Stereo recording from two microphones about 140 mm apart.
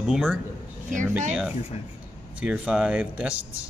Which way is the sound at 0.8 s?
65° right (ahead or behind).